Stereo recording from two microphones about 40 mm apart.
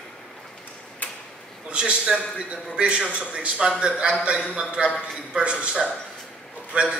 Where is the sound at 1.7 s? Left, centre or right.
Right.